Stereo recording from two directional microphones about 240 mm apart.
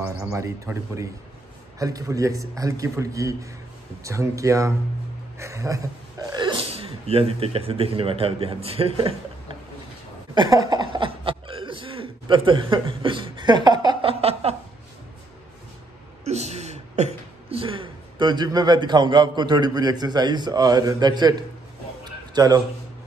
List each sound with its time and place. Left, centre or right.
0.0 s a man's voice: centre
10.3 s chuckle: centre
16.3 s speech: right
22.0 s a sound: centre